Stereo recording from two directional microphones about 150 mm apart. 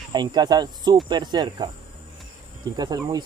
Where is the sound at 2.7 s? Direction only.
25° right (ahead or behind).